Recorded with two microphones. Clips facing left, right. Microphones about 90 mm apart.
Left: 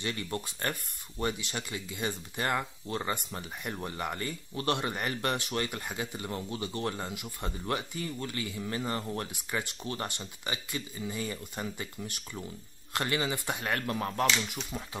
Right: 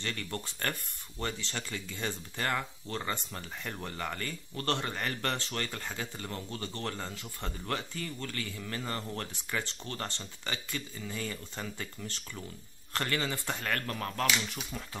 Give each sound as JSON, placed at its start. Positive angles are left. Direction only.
{"t": 0.0, "sound": "speech", "side_deg": 15}